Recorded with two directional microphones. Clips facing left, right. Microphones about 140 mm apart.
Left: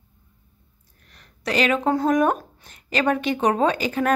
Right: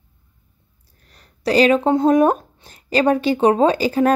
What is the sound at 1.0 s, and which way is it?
Speech, 35° right (ahead or behind).